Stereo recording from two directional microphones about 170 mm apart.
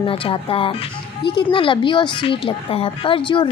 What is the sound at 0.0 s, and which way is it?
A woman's voice, 30° left (ahead or behind).